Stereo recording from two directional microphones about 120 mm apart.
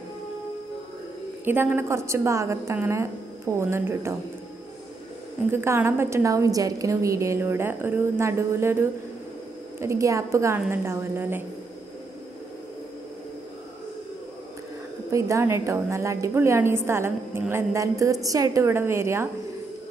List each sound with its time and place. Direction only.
1.4 s a woman's voice: 15° right (ahead or behind)
5.5 s a woman's voice: 20° right (ahead or behind)
15.0 s a woman's voice: 25° right (ahead or behind)